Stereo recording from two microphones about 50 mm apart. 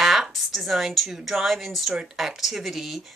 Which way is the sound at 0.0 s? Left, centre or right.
Centre.